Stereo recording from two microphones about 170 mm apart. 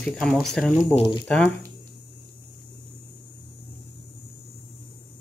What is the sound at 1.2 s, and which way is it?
Speech, 5° left (ahead or behind).